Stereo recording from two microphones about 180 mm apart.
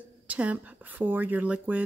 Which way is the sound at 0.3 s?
10° right (ahead or behind).